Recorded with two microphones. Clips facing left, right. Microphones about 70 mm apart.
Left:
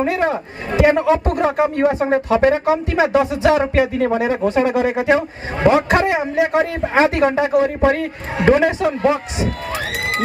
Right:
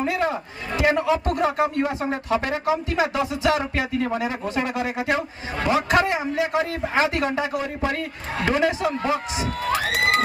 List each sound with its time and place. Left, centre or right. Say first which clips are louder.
0.0 s a man's voice: left 5 dB; left
9.9 s crowd: right 3 dB; right